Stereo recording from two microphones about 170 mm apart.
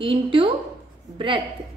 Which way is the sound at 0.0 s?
30° right (ahead or behind).